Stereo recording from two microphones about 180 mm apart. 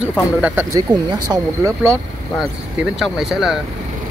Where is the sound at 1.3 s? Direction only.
20° right (ahead or behind).